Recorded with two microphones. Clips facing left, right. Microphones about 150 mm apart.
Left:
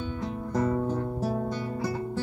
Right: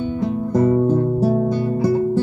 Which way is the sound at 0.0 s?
20° right (ahead or behind).